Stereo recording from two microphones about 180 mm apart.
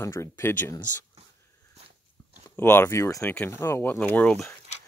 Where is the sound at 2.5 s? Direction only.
10° left (ahead or behind).